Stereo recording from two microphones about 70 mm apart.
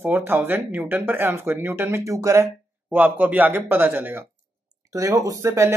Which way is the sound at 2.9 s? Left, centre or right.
Right.